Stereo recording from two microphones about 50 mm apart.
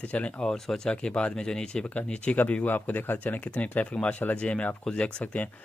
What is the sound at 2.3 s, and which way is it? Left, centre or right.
Speech, left.